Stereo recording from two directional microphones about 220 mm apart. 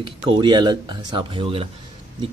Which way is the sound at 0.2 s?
20° right (ahead or behind).